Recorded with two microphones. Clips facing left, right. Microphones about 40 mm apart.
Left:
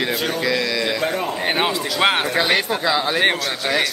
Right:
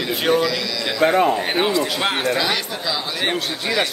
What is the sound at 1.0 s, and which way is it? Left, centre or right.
Speech, right.